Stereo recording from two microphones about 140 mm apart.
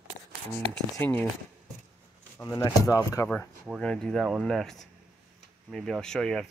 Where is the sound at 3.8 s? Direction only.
5° left (ahead or behind).